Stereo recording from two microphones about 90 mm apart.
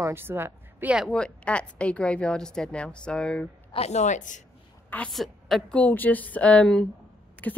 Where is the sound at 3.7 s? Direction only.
75° left (ahead or behind).